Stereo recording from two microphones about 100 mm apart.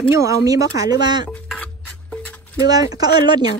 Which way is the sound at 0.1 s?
30° right (ahead or behind).